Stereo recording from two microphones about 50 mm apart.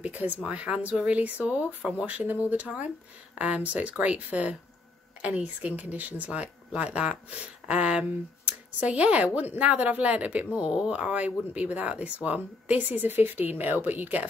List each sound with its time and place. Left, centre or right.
0.0 s speech: right
10.7 s speech: centre
11.0 s speech: right